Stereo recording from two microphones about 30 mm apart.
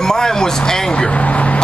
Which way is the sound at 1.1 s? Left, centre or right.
Left.